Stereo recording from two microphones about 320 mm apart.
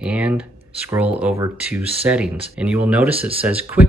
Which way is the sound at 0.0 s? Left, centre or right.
Centre.